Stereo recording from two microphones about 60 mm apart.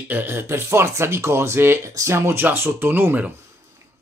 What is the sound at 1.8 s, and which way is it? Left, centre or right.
Speech, right.